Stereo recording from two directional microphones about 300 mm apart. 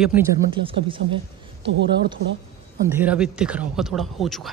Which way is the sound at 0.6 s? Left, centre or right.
Centre.